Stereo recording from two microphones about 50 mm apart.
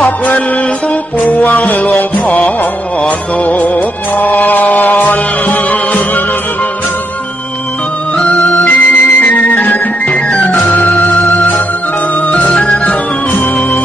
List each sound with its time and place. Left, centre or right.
1.2 s music: left
8.3 s music: left
12.3 s music: left